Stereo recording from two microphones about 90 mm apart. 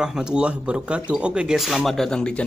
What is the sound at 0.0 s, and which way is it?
Speech, 10° right (ahead or behind).